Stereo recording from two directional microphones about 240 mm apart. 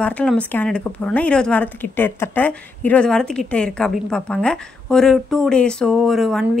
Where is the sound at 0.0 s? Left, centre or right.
Centre.